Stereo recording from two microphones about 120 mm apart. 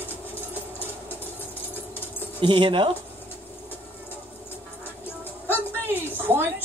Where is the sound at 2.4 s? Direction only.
40° right (ahead or behind).